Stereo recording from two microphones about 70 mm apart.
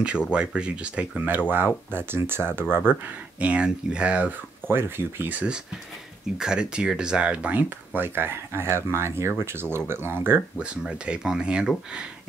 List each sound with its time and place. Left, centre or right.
0.0 s speech: centre
1.9 s speech: right; by 4.3 s centre
4.6 s speech: right
6.3 s speech: centre; by 10.4 s right
10.6 s speech: centre